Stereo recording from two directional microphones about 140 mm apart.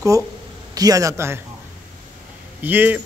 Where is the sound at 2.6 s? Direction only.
10° right (ahead or behind).